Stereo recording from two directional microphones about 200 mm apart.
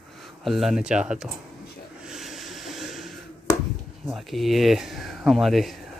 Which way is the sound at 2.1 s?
Centre (ahead or behind).